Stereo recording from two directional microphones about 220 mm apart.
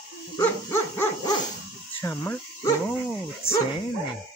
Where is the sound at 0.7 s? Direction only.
15° left (ahead or behind).